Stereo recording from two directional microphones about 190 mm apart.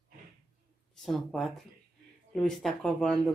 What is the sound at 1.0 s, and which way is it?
Speech, centre (ahead or behind).